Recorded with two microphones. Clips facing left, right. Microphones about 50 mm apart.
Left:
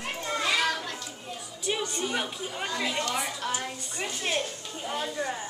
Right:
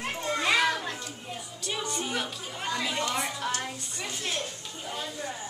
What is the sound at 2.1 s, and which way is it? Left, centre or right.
Speech, centre.